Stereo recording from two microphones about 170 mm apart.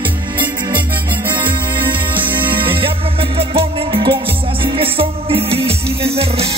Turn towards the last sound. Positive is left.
turn(degrees=-35)  # may be behind; listen again after turning